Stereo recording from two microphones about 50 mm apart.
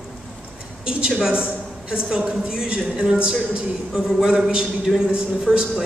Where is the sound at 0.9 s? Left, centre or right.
Centre.